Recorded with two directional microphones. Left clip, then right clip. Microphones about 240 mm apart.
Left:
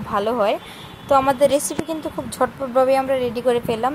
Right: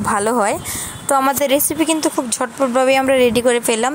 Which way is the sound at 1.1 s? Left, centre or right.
Right.